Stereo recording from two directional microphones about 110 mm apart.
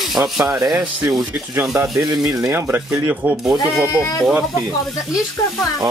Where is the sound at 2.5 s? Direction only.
25° right (ahead or behind).